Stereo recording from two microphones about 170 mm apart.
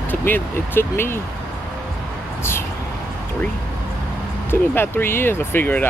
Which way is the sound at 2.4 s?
15° left (ahead or behind).